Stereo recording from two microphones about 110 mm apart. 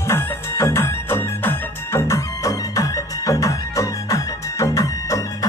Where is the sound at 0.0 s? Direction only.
20° left (ahead or behind).